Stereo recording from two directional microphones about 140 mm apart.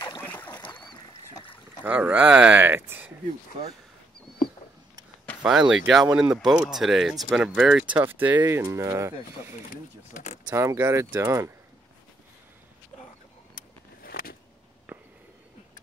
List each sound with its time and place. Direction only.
0.2 s duck: 10° left (ahead or behind)
1.8 s speech: 10° right (ahead or behind)
5.4 s speech: 5° right (ahead or behind); by 11.5 s 20° right (ahead or behind)
13.6 s vehicle: 90° left
14.9 s a sound: 15° right (ahead or behind)